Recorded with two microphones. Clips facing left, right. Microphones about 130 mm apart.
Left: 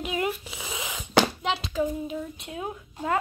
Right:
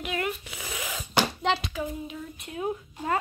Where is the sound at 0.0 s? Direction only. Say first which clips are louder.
Left 2 dB; 20° left (ahead or behind).